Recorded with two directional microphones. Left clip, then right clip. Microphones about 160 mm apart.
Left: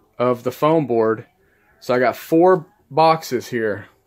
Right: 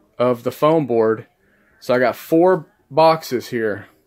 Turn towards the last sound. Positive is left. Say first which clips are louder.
# even
turn(degrees=-5)  # may be behind; listen again after turning